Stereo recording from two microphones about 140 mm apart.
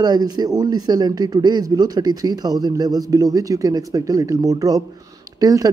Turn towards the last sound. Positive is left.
turn(degrees=-25)  # may be behind; listen again after turning